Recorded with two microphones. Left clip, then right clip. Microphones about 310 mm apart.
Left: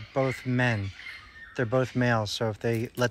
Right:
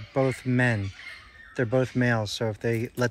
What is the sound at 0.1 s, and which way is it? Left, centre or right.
Speech, centre.